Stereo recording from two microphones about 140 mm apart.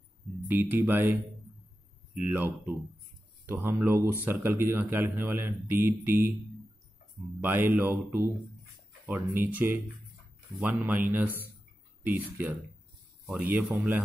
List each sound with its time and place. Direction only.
0.5 s a man's voice: 15° right (ahead or behind)
2.1 s a man's voice: 15° right (ahead or behind)
7.3 s a man's voice: 15° right (ahead or behind)